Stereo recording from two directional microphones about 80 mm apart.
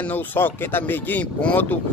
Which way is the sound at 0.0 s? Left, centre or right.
Left.